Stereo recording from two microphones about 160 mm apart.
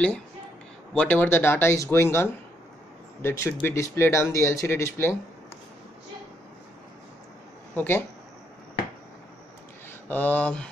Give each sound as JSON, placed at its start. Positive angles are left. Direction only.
{"t": 0.9, "sound": "speech", "side_deg": 10}
{"t": 7.7, "sound": "speech", "side_deg": 15}
{"t": 10.0, "sound": "speech", "side_deg": 10}